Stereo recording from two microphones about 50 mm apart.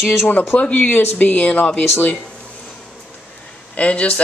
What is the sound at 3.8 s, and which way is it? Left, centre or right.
Speech, left.